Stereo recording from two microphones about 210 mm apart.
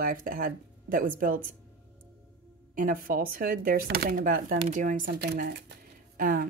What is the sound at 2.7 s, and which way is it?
Speech, 40° right (ahead or behind).